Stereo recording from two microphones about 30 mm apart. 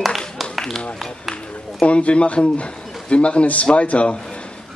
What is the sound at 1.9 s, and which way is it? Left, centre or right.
A man's voice, left.